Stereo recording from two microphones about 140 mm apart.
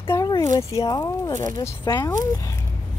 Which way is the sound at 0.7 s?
25° left (ahead or behind).